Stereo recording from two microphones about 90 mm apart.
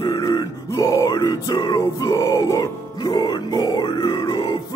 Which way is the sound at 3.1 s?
55° left (ahead or behind).